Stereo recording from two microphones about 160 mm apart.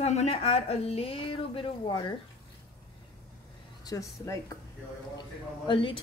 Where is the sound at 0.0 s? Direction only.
45° left (ahead or behind); by 2.1 s 30° left (ahead or behind).